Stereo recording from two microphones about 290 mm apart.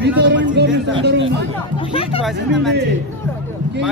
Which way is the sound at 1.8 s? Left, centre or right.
Centre.